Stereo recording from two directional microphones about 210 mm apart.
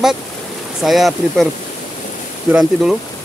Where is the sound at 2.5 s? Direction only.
Centre (ahead or behind).